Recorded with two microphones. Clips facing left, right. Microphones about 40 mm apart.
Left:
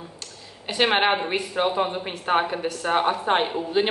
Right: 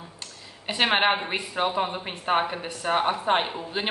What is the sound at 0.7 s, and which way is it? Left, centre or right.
A woman's voice, centre.